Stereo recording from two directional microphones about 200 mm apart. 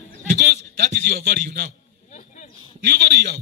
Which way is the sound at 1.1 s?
45° right (ahead or behind).